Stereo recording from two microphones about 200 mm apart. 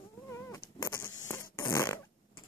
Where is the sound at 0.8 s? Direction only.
15° left (ahead or behind).